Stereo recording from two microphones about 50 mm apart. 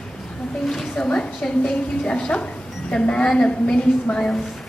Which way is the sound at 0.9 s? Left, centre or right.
Centre.